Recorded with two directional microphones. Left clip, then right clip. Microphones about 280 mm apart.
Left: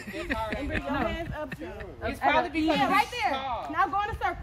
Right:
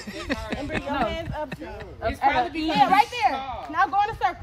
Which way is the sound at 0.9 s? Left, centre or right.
Right.